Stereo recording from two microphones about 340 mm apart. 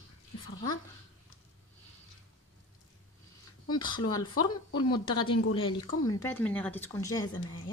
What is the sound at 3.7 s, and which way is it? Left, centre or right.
Speech, centre.